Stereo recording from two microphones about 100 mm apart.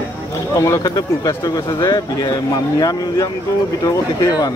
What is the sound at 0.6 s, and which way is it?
Speech, 30° left (ahead or behind).